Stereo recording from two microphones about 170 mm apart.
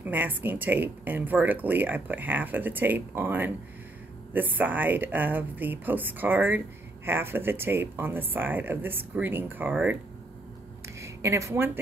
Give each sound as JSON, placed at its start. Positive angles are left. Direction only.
{"t": 0.0, "sound": "speech", "side_deg": -10}
{"t": 11.0, "sound": "a woman's voice", "side_deg": -15}